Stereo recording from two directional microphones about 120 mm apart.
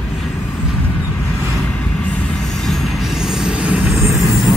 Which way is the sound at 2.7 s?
Centre (ahead or behind).